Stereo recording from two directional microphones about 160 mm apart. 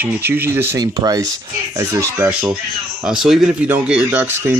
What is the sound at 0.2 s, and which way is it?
Speech, 15° right (ahead or behind).